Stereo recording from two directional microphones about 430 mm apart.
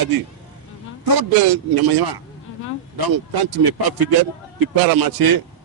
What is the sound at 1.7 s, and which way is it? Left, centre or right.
Speech, right.